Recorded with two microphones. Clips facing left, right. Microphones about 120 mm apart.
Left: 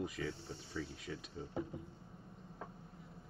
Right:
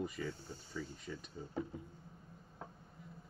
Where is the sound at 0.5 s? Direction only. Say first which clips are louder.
Left 1 dB; 75° left (ahead or behind).